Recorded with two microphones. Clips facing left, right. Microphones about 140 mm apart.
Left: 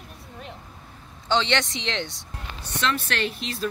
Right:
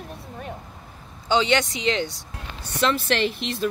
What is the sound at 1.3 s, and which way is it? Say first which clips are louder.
Speech: right 3 dB; 5° right (ahead or behind).